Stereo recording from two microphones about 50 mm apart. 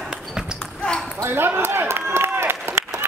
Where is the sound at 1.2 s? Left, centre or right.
Right.